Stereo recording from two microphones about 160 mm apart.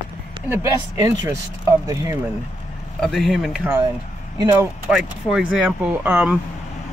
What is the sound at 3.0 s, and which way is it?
Speech, centre (ahead or behind).